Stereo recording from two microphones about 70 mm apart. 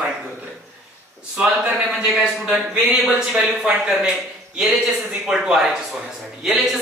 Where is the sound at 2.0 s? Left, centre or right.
Centre.